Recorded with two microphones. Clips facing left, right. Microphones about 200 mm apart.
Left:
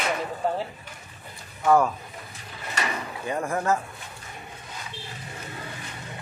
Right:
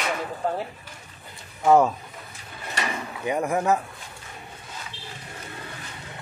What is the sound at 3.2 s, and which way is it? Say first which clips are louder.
Speech: right 4 dB; 15° right (ahead or behind).